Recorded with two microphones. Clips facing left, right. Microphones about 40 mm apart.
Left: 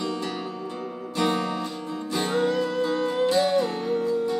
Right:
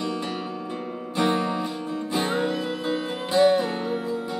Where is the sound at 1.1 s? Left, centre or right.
Right.